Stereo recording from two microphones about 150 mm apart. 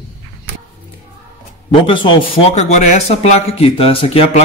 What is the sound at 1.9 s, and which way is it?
A man's voice, 35° left (ahead or behind).